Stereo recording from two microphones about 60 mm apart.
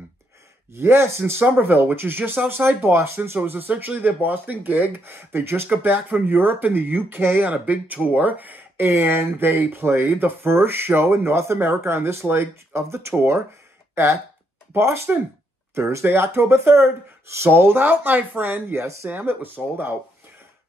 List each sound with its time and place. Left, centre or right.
0.7 s speech: right
1.4 s speech: right
14.7 s speech: right
18.8 s speech: right
19.0 s speech: right